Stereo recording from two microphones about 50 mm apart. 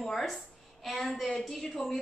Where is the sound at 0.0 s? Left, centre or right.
Centre.